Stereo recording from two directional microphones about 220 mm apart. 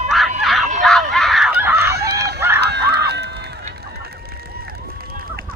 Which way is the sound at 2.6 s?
50° right (ahead or behind).